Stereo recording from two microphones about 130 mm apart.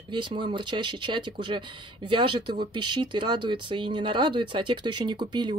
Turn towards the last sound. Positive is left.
turn(degrees=-35)  # may be behind; listen again after turning